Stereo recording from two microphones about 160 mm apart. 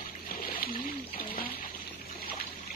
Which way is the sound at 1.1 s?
70° left (ahead or behind).